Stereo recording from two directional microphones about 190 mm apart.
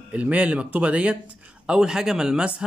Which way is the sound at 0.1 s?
5° right (ahead or behind).